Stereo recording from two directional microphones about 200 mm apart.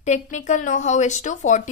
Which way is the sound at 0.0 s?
35° left (ahead or behind).